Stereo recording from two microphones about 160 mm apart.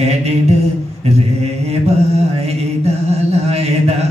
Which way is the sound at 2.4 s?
40° right (ahead or behind).